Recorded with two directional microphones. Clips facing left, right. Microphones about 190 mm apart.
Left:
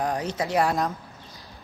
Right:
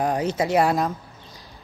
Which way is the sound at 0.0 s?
25° right (ahead or behind).